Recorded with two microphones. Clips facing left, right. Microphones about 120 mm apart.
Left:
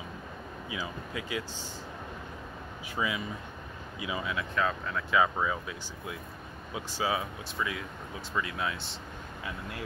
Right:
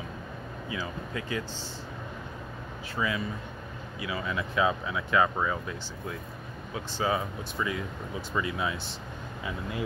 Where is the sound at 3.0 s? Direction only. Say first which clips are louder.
Right 2 dB; 15° left (ahead or behind).